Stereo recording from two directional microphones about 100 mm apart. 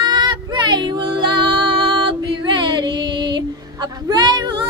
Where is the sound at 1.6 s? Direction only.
60° right (ahead or behind).